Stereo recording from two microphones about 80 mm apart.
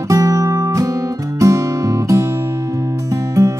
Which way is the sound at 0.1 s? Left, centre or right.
Right.